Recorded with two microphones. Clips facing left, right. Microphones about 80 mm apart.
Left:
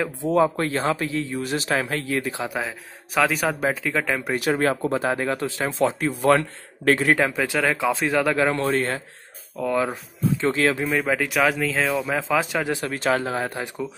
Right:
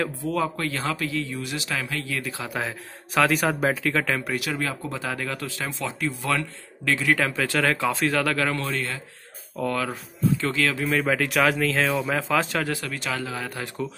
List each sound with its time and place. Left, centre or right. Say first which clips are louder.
0.0 s speech: left 5 dB; left
3.2 s speech: even; centre
4.4 s speech: left 7 dB; left
7.2 s speech: left 2 dB; centre; by 9.0 s left
9.8 s speech: left 4 dB; left
10.9 s speech: even; centre
12.5 s speech: left 2 dB; left
12.9 s speech: left 7 dB; left